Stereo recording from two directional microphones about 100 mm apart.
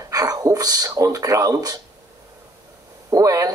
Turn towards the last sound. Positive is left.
turn(degrees=-35)  # may be behind; listen again after turning